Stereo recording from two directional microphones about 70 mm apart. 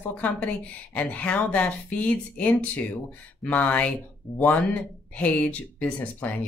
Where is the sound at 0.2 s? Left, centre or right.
Left.